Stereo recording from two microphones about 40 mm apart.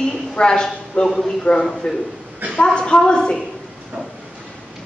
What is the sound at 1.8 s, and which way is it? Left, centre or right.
A woman's voice, left.